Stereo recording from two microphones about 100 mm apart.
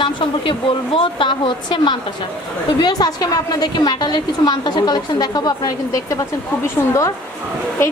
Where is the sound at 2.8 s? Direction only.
40° left (ahead or behind).